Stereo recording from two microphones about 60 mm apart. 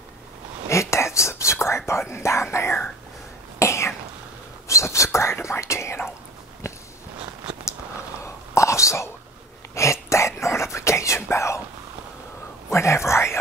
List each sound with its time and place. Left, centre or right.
0.7 s whispering: left
3.5 s cough: left
4.6 s whispering: left
8.2 s whispering: left
12.6 s whispering: left